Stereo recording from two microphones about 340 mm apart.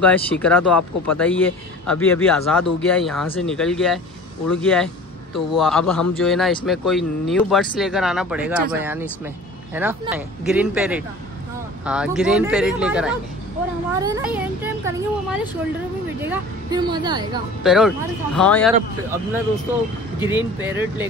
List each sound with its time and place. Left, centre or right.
0.0 s a man's voice: centre
0.7 s speech: left
1.4 s a man's voice: centre
17.6 s a man's voice: centre